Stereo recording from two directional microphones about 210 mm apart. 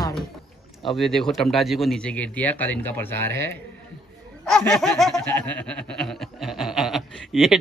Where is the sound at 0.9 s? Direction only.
Centre (ahead or behind).